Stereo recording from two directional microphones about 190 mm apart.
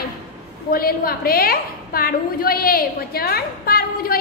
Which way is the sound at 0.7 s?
50° left (ahead or behind).